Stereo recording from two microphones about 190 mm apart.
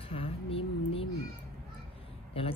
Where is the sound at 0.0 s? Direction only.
30° left (ahead or behind).